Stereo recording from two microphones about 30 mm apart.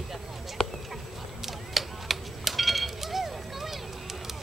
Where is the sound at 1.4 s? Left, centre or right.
Centre.